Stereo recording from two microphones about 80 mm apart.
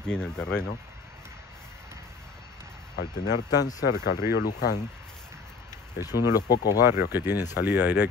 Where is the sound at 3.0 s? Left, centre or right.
Left.